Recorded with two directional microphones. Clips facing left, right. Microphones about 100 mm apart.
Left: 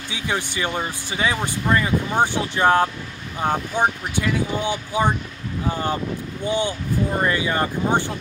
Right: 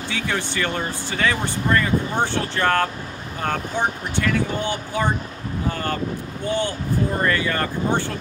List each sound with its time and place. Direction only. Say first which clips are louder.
0.1 s speech: even; 15° left (ahead or behind)